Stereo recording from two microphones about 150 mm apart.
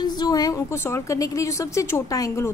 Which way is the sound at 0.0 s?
25° left (ahead or behind).